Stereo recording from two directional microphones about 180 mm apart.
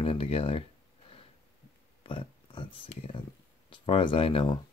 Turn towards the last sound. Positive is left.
turn(degrees=30)  # may be behind; listen again after turning